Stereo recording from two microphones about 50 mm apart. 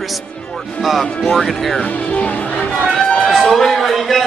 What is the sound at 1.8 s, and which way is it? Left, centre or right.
Speech, left.